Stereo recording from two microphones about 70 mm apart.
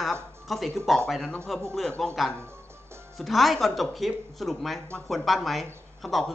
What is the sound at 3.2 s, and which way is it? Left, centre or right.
Speech, centre.